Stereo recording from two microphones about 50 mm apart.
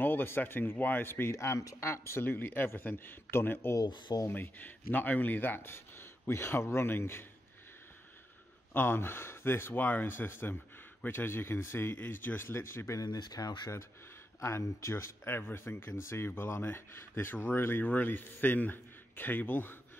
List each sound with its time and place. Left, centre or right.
0.0 s speech: left
1.3 s speech: left
2.2 s speech: left
4.3 s speech: left
8.7 s speech: left
12.0 s speech: left
14.4 s speech: left
15.2 s speech: left